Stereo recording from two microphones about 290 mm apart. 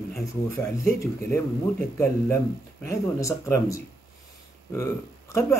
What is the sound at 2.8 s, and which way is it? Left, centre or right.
Speech, centre.